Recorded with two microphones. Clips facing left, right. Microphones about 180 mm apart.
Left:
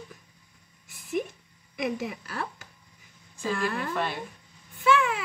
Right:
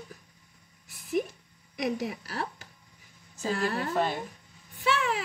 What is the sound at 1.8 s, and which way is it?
A woman's voice, 40° right (ahead or behind).